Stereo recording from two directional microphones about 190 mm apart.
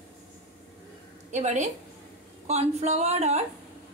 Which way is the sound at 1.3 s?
40° right (ahead or behind).